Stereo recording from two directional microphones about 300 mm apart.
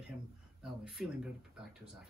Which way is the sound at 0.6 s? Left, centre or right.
Centre.